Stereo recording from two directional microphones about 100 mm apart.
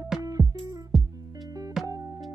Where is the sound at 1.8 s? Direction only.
35° right (ahead or behind).